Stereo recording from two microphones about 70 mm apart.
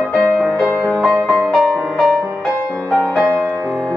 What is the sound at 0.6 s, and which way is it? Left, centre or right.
Music, centre.